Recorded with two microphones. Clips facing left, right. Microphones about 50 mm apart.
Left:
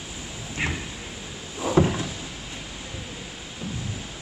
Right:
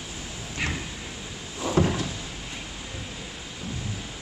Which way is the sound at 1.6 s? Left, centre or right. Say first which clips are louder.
Left 3 dB; centre.